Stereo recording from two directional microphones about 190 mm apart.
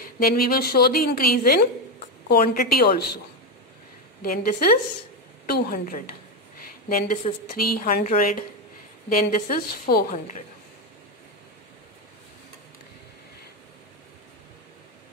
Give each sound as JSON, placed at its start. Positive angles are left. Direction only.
{"t": 0.2, "sound": "a woman's voice", "side_deg": 50}
{"t": 4.2, "sound": "a woman's voice", "side_deg": 50}